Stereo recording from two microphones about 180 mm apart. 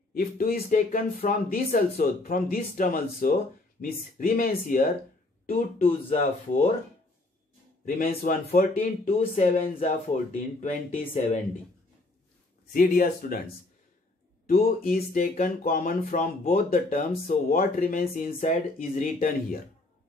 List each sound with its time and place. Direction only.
0.1 s speech: 55° left (ahead or behind)
6.0 s speech: 45° left (ahead or behind)
8.2 s speech: 50° left (ahead or behind)
12.7 s speech: 50° left (ahead or behind)
14.4 s speech: 50° left (ahead or behind)